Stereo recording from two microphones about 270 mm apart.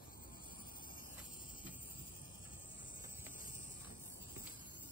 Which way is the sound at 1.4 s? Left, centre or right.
Centre.